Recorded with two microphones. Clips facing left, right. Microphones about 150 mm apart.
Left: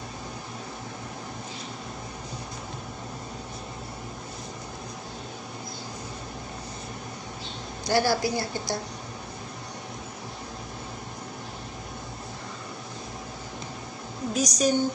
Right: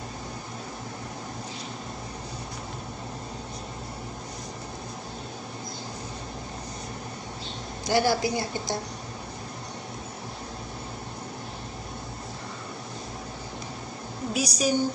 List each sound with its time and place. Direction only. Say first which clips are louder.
7.9 s a woman's voice: even; 15° right (ahead or behind)
14.3 s a woman's voice: left 2 dB; 10° right (ahead or behind)